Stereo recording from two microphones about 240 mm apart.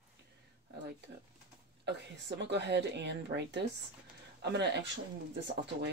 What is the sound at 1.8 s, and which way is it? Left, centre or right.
A woman's voice, right.